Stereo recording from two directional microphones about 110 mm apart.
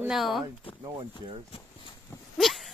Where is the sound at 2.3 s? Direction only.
Centre (ahead or behind).